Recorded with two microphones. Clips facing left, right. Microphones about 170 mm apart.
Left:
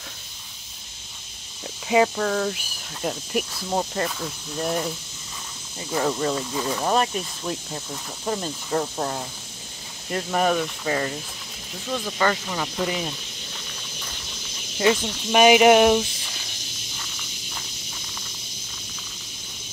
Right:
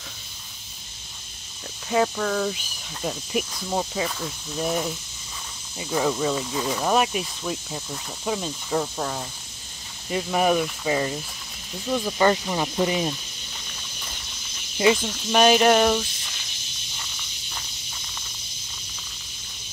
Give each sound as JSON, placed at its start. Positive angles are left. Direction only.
{"t": 1.9, "sound": "speech", "side_deg": 5}
{"t": 10.0, "sound": "speech", "side_deg": -5}
{"t": 15.3, "sound": "speech", "side_deg": 10}